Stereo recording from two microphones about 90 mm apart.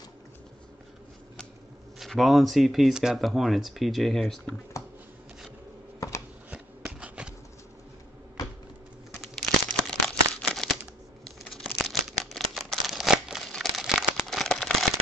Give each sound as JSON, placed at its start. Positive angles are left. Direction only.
{"t": 2.0, "sound": "speech", "side_deg": 0}
{"t": 5.9, "sound": "shuffling cards", "side_deg": 40}
{"t": 6.5, "sound": "shuffling cards", "side_deg": -15}
{"t": 9.2, "sound": "crumpling", "side_deg": 5}
{"t": 13.5, "sound": "a sound", "side_deg": 0}